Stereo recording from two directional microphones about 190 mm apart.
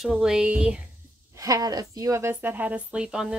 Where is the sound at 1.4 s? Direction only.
20° right (ahead or behind).